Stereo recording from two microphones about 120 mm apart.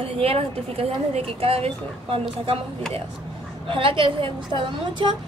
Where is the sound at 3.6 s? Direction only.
45° right (ahead or behind).